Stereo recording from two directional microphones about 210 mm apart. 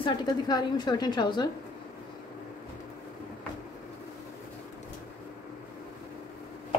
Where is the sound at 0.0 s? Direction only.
20° left (ahead or behind).